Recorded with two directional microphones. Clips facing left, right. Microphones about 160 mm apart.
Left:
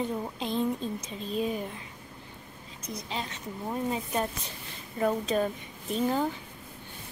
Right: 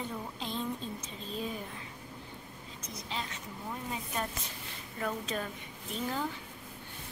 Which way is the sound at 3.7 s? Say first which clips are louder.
Left 8 dB; 25° left (ahead or behind).